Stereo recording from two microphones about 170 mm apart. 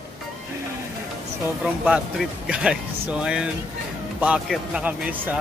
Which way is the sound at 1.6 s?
5° right (ahead or behind).